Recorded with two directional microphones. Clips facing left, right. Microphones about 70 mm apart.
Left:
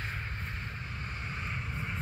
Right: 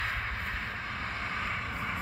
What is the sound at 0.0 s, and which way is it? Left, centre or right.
Vehicle, right.